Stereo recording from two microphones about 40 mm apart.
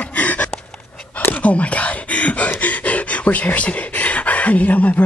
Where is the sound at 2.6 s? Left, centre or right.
Left.